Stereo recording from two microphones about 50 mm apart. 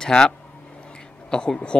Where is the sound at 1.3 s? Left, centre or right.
Centre.